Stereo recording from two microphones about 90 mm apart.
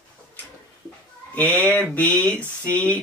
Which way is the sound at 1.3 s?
15° left (ahead or behind).